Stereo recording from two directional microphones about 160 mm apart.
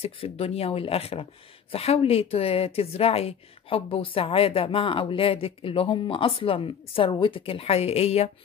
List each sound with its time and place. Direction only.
0.0 s speech: 40° left (ahead or behind)